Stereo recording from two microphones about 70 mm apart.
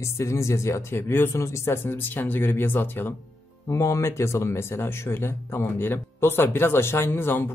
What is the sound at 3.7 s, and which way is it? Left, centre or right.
Speech, left.